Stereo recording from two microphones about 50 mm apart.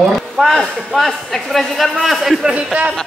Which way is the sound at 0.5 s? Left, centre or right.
Centre.